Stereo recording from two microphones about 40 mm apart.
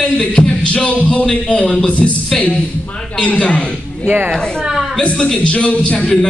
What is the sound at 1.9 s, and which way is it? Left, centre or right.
Speech, left.